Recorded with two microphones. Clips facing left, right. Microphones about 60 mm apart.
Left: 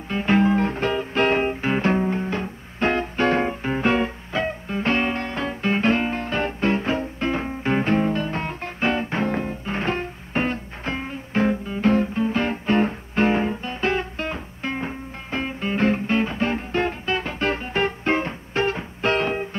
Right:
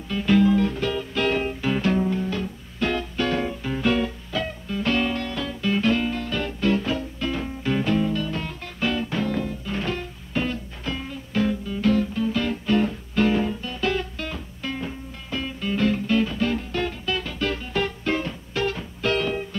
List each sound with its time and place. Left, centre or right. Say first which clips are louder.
0.1 s music: even; left